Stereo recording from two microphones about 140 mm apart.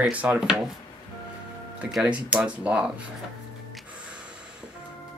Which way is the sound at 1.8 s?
5° right (ahead or behind).